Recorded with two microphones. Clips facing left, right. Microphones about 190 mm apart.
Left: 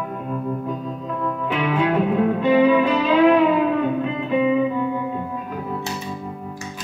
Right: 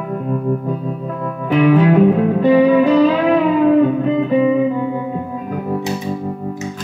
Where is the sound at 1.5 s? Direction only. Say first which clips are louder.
Right 10 dB; 45° right (ahead or behind).